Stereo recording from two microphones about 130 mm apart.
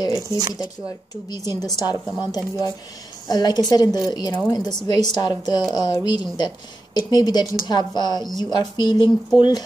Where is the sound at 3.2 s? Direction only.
30° left (ahead or behind).